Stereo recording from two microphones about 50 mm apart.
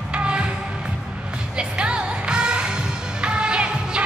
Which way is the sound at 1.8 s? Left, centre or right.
Centre.